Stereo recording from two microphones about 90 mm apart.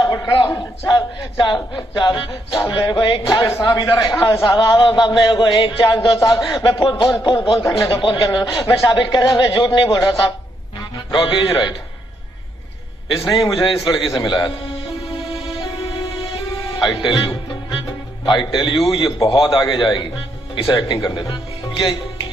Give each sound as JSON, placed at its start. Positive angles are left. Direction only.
{"t": 0.0, "sound": "a sound", "side_deg": 45}
{"t": 0.5, "sound": "a man's voice", "side_deg": 45}
{"t": 1.4, "sound": "a man's voice", "side_deg": 60}
{"t": 1.8, "sound": "music", "side_deg": 50}
{"t": 4.4, "sound": "a man's voice", "side_deg": 50}
{"t": 6.1, "sound": "music", "side_deg": 50}
{"t": 7.9, "sound": "a man's voice", "side_deg": 65}
{"t": 9.9, "sound": "music", "side_deg": 55}
{"t": 11.1, "sound": "a man's voice", "side_deg": 60}
{"t": 13.3, "sound": "a man's voice", "side_deg": 55}
{"t": 13.8, "sound": "music", "side_deg": 55}
{"t": 16.7, "sound": "a man's voice", "side_deg": 55}
{"t": 19.6, "sound": "a man's voice", "side_deg": 55}